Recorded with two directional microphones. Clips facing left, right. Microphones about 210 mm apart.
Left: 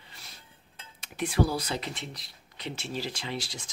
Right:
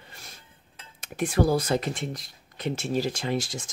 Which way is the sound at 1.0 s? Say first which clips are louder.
Right 4 dB; 50° right (ahead or behind).